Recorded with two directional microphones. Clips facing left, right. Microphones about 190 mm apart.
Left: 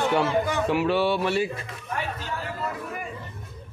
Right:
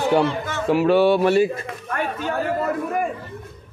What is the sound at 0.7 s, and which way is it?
Speech, 50° right (ahead or behind).